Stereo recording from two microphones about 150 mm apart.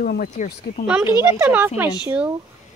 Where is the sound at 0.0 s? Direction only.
90° left.